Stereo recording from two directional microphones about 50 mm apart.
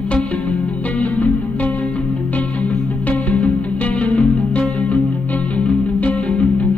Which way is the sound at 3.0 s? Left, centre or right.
Left.